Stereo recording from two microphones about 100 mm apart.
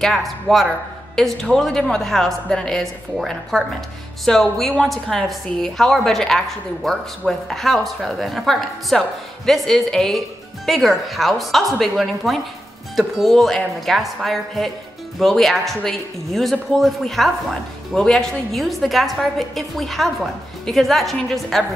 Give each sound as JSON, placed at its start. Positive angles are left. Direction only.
{"t": 0.0, "sound": "a woman's voice", "side_deg": 5}